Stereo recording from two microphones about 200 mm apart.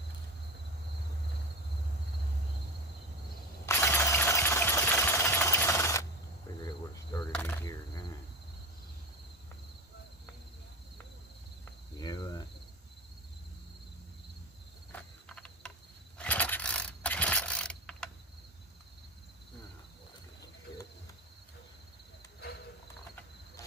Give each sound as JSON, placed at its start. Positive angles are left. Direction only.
{"t": 3.6, "sound": "engine", "side_deg": 15}
{"t": 6.6, "sound": "cricket", "side_deg": 20}
{"t": 12.0, "sound": "cricket", "side_deg": 20}
{"t": 14.9, "sound": "cricket", "side_deg": 5}
{"t": 16.2, "sound": "mechanisms", "side_deg": 10}